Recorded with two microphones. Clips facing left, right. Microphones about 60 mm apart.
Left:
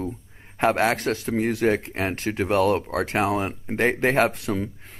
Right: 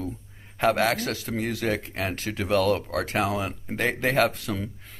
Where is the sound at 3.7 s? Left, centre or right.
Left.